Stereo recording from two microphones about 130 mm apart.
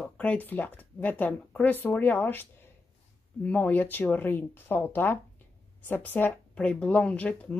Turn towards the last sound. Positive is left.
turn(degrees=10)  # may be behind; listen again after turning